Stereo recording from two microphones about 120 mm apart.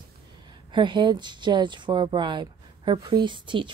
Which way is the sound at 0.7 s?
40° right (ahead or behind).